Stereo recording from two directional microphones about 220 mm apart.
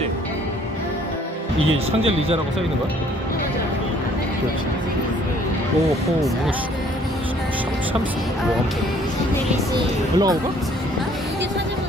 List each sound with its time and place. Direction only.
1.9 s speech: 25° right (ahead or behind)
9.8 s speech: 20° right (ahead or behind)